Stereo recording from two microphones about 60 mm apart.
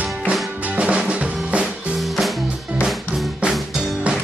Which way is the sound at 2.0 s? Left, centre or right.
Centre.